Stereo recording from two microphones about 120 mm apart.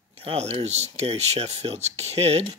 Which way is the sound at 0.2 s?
55° right (ahead or behind).